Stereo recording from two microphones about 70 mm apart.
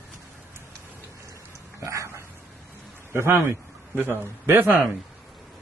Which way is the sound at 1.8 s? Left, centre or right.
Right.